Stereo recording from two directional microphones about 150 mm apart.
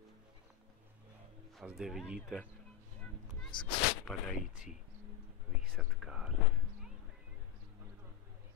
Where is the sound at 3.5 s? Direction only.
30° left (ahead or behind).